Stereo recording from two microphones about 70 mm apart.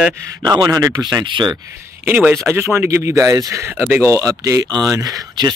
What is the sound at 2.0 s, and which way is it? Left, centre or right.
Speech, right.